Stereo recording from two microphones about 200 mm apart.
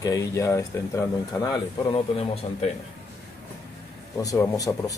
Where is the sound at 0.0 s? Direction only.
15° left (ahead or behind).